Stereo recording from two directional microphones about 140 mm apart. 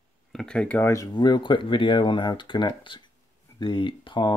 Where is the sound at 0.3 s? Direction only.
5° left (ahead or behind).